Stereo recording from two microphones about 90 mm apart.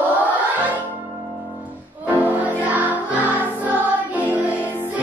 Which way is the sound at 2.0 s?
20° right (ahead or behind).